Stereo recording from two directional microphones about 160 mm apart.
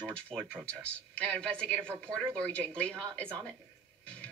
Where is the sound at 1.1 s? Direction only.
5° left (ahead or behind).